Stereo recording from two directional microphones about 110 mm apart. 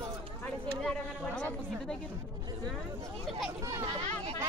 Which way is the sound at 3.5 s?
35° right (ahead or behind).